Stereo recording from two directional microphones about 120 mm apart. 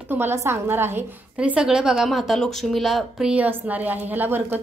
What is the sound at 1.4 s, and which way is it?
Speech, 10° right (ahead or behind).